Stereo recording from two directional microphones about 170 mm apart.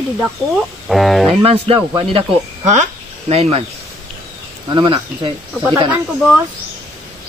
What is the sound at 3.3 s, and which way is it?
Speech, 35° right (ahead or behind).